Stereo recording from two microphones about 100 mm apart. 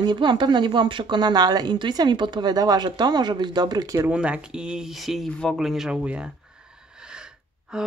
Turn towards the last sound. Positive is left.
turn(degrees=-5)  # may be behind; listen again after turning